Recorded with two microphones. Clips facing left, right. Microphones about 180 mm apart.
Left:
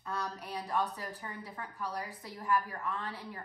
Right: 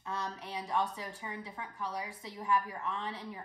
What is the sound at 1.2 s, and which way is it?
Speech, 10° right (ahead or behind).